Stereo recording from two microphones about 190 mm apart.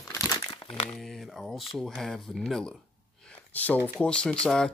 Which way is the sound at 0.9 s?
Centre (ahead or behind).